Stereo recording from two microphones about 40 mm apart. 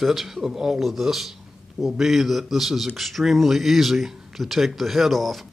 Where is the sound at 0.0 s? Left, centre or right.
Centre.